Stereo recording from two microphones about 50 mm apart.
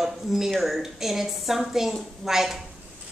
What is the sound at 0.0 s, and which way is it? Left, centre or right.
A woman's voice, centre.